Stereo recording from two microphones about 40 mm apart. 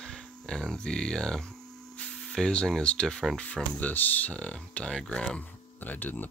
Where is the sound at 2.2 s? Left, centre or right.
Centre.